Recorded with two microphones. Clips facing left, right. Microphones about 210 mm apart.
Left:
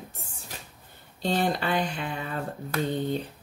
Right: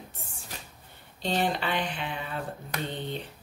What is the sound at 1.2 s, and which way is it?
Speech, 45° left (ahead or behind).